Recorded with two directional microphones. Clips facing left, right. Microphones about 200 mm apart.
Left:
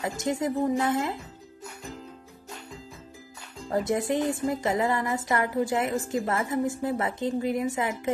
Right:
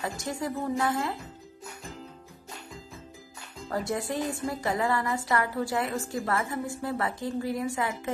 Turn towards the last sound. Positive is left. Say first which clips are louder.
# left 3 dB
turn(degrees=20)  # may be behind; listen again after turning